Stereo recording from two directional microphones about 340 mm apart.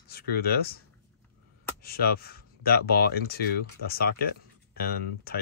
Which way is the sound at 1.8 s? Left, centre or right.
Left.